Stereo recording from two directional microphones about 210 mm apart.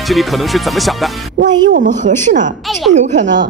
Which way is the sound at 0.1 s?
Centre (ahead or behind).